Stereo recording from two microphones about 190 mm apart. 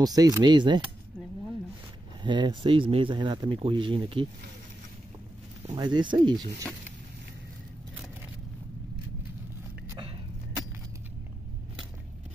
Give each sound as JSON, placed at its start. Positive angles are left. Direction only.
{"t": 0.0, "sound": "speech", "side_deg": -20}
{"t": 2.2, "sound": "speech", "side_deg": -25}
{"t": 5.8, "sound": "speech", "side_deg": -25}
{"t": 9.8, "sound": "a sound", "side_deg": -20}